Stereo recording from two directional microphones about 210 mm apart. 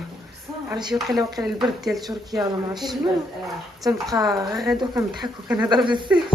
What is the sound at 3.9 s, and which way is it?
Speech, 15° right (ahead or behind).